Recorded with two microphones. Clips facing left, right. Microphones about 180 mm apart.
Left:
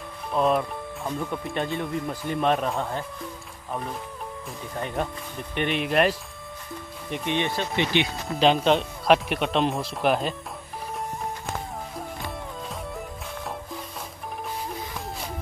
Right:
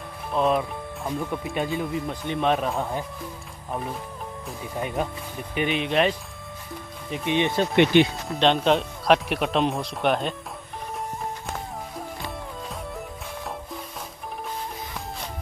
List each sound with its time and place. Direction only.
0.3 s speech: centre (ahead or behind)
7.2 s speech: 15° right (ahead or behind)
7.7 s speech: 60° right (ahead or behind)
8.0 s speech: centre (ahead or behind)
12.2 s music: centre (ahead or behind)